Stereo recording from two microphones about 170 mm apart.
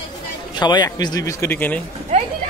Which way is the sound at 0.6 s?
25° left (ahead or behind).